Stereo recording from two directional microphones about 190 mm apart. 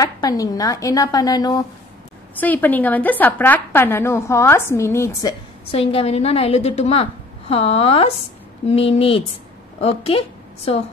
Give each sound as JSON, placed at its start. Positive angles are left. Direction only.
{"t": 0.0, "sound": "speech", "side_deg": 20}
{"t": 2.3, "sound": "a woman's voice", "side_deg": 10}
{"t": 5.7, "sound": "a woman's voice", "side_deg": 30}